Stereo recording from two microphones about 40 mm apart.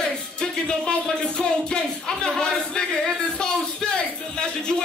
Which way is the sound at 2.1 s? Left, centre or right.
Centre.